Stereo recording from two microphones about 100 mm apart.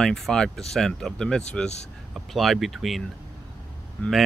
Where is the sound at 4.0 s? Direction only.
15° left (ahead or behind).